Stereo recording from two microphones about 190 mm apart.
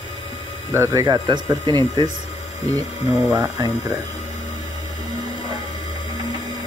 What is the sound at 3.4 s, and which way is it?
Speech, 20° right (ahead or behind).